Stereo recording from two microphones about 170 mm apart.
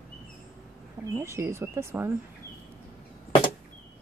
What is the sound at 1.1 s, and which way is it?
Speech, 15° right (ahead or behind).